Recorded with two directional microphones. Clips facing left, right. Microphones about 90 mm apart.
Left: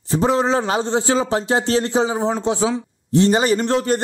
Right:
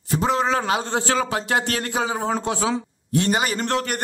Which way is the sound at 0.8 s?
20° left (ahead or behind).